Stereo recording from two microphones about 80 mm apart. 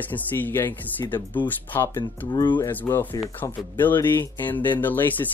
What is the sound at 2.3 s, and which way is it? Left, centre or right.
Speech, left.